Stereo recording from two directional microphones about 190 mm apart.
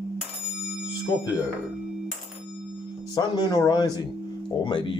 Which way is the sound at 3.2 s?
20° left (ahead or behind).